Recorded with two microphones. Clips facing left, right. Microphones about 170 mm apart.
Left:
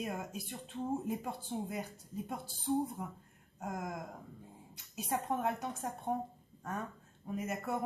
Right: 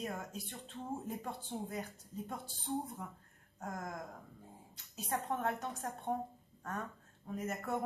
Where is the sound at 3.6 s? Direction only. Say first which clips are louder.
Left 3 dB; 20° left (ahead or behind).